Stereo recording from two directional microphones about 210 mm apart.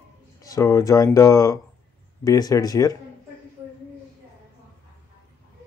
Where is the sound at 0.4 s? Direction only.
15° left (ahead or behind).